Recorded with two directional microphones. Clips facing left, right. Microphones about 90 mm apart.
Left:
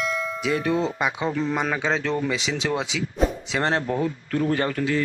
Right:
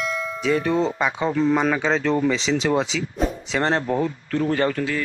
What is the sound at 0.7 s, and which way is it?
Speech, 35° right (ahead or behind).